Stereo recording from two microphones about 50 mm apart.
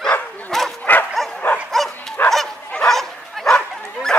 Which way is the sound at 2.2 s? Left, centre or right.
Left.